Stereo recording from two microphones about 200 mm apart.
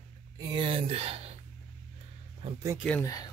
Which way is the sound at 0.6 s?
25° right (ahead or behind).